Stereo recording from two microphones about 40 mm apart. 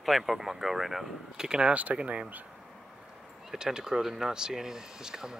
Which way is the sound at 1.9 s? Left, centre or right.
Right.